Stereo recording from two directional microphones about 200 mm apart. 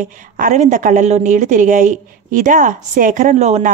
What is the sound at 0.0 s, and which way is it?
A woman's voice, 40° right (ahead or behind).